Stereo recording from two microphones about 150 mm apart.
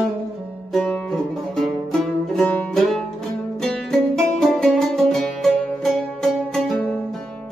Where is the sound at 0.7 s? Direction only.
5° left (ahead or behind).